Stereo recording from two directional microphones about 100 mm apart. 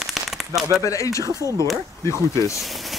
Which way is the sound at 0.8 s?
35° left (ahead or behind).